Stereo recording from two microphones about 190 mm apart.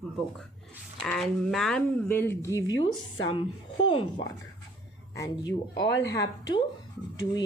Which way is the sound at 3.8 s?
25° left (ahead or behind).